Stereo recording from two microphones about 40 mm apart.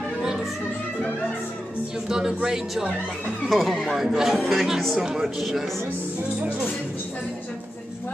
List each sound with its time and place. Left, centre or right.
2.0 s speech: centre
3.4 s speech: centre
4.9 s speech: centre